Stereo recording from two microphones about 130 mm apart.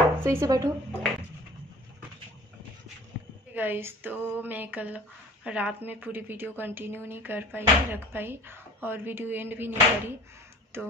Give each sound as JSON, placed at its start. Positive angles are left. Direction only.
{"t": 0.2, "sound": "speech", "side_deg": -20}
{"t": 3.5, "sound": "speech", "side_deg": -15}